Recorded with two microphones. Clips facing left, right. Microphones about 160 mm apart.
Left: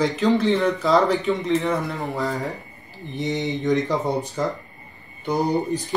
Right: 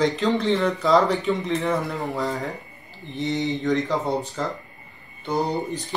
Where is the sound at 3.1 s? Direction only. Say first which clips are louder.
Even; 20° left (ahead or behind).